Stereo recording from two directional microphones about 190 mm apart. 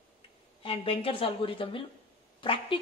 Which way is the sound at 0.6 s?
30° left (ahead or behind).